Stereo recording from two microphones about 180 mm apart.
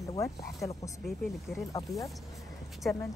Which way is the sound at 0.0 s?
15° left (ahead or behind).